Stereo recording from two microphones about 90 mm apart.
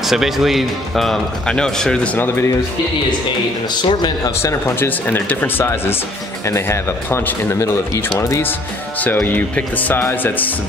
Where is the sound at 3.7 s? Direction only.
55° left (ahead or behind).